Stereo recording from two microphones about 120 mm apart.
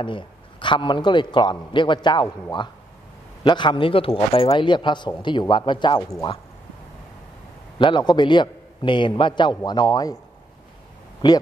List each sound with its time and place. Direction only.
0.0 s a man's voice: 45° left (ahead or behind)
3.4 s a man's voice: 40° left (ahead or behind)
7.8 s a man's voice: 40° left (ahead or behind)
11.2 s a man's voice: 35° left (ahead or behind)